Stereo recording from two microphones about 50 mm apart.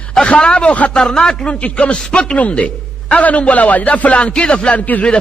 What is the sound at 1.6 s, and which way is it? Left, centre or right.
Speech, left.